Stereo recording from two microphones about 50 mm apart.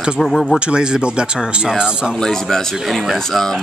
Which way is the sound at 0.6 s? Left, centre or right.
Centre.